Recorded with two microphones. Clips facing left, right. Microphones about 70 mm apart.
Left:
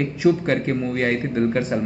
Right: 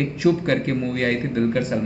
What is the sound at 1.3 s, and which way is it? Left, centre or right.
Speech, left.